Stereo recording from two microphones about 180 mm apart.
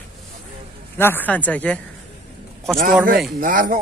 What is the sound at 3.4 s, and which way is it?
Speech, 50° right (ahead or behind).